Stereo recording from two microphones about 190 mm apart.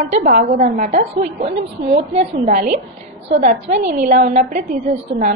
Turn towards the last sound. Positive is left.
turn(degrees=-40)  # may be behind; listen again after turning